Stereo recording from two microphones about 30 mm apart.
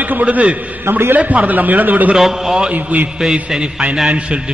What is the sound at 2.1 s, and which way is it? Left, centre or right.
Speech, centre.